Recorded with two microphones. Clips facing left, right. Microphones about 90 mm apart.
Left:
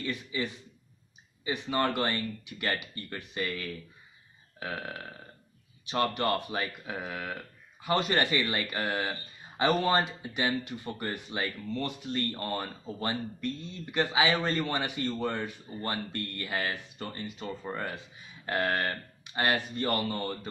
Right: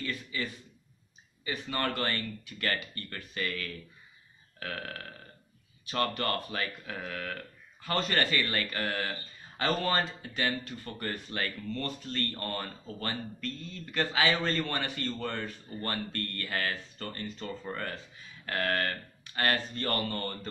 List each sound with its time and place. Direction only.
0.0 s speech: 20° left (ahead or behind)